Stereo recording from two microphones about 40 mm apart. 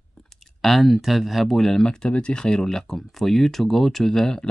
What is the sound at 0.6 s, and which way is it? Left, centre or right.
Speech, centre.